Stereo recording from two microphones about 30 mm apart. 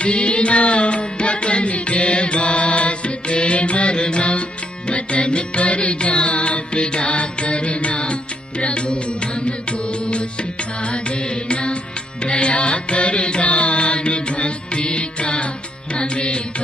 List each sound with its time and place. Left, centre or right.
0.0 s music: left